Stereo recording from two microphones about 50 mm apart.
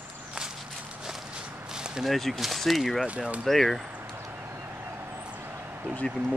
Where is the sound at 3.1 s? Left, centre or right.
Right.